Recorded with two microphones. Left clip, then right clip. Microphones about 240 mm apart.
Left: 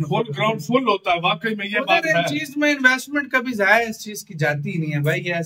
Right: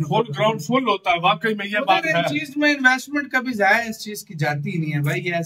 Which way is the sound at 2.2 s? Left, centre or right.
Centre.